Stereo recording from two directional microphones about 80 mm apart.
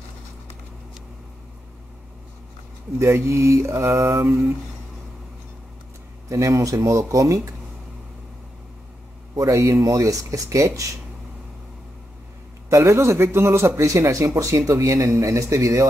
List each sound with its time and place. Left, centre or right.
3.0 s a man's voice: right
6.2 s a man's voice: right
9.4 s speech: right
12.6 s a man's voice: right